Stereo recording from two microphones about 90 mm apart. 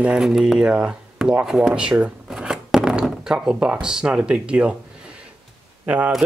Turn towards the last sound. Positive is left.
turn(degrees=-15)  # may be behind; listen again after turning